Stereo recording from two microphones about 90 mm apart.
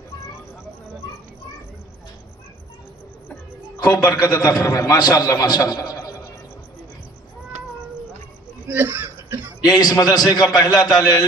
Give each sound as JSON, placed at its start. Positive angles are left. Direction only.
{"t": 4.1, "sound": "a man's voice", "side_deg": 45}
{"t": 8.6, "sound": "chuckle", "side_deg": -20}
{"t": 9.7, "sound": "a man's voice", "side_deg": 45}